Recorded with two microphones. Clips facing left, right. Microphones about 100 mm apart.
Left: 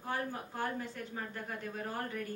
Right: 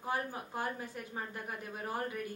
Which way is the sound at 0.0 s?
15° right (ahead or behind).